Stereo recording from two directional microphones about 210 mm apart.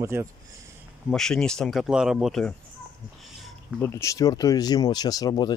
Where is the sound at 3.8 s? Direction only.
15° left (ahead or behind).